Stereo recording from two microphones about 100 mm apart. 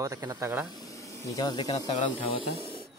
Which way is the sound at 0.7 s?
35° left (ahead or behind).